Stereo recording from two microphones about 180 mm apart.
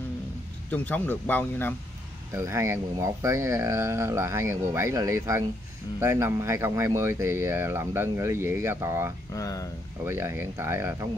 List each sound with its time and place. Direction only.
0.7 s speech: 10° left (ahead or behind)
2.3 s speech: 15° right (ahead or behind)
9.3 s speech: 20° left (ahead or behind)
10.0 s speech: 15° right (ahead or behind)